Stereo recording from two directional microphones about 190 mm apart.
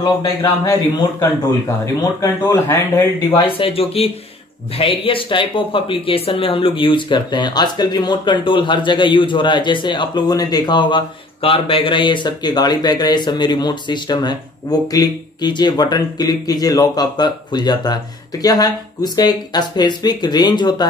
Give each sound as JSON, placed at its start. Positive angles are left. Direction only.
{"t": 0.0, "sound": "speech", "side_deg": 20}
{"t": 3.3, "sound": "speech", "side_deg": 25}